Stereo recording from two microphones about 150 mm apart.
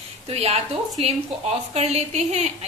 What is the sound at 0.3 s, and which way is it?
A woman's voice, 45° right (ahead or behind).